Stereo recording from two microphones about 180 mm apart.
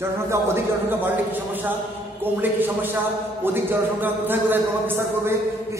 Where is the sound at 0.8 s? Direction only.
10° right (ahead or behind).